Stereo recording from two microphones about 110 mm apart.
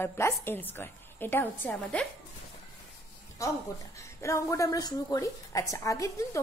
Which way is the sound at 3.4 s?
30° left (ahead or behind).